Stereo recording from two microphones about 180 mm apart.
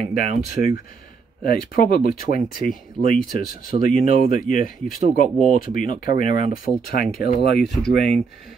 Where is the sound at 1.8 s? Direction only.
55° left (ahead or behind).